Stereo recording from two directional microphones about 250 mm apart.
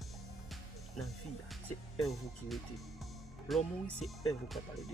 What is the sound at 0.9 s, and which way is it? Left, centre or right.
Speech, centre.